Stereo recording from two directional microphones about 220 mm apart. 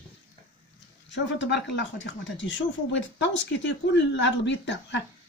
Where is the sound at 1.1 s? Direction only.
55° left (ahead or behind).